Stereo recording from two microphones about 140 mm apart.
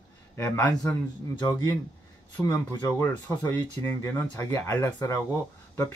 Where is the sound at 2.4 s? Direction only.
25° left (ahead or behind).